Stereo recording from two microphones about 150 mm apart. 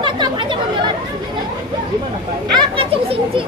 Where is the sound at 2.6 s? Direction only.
40° right (ahead or behind).